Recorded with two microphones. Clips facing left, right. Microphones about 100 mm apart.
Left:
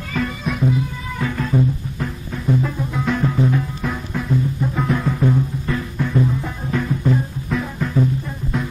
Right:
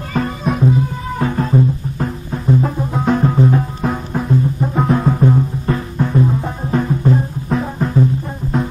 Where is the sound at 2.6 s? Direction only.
35° right (ahead or behind).